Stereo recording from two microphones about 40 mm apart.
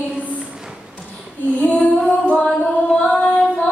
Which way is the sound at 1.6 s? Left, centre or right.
Left.